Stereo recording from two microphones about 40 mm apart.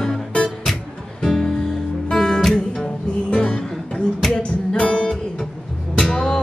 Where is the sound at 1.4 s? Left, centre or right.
Centre.